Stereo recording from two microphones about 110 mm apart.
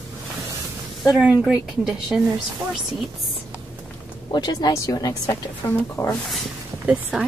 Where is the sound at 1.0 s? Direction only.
Centre (ahead or behind).